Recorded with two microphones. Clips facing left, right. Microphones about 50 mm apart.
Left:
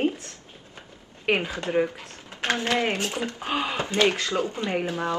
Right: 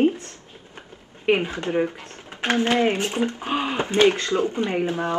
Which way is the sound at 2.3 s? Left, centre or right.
Right.